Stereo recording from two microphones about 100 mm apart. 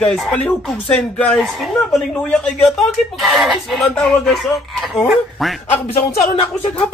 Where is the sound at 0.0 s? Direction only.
5° left (ahead or behind).